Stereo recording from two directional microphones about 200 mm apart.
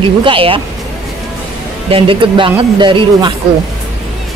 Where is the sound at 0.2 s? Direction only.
25° right (ahead or behind).